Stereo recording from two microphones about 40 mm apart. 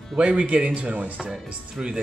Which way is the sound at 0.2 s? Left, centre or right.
Right.